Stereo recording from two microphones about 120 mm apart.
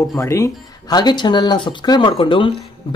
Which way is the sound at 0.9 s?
35° left (ahead or behind).